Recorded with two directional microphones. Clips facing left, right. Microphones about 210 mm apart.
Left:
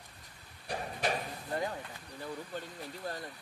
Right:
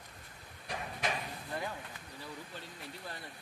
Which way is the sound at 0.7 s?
35° left (ahead or behind).